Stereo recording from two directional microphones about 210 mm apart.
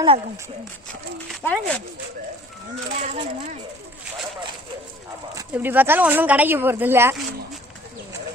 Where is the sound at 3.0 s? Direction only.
30° right (ahead or behind).